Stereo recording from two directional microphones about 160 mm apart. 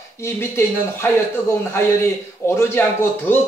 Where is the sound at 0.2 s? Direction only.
15° left (ahead or behind).